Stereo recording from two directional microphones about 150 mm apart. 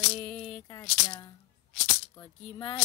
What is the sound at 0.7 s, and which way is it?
Speech, 20° left (ahead or behind).